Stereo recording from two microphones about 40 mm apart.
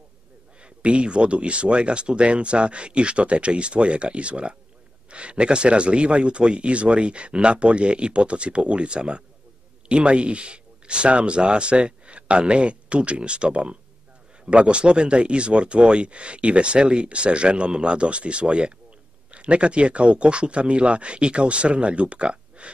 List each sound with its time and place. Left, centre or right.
0.6 s speech: right